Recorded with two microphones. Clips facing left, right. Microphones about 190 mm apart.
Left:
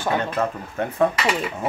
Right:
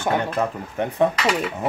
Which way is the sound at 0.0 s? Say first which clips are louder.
Right 1 dB; 15° right (ahead or behind).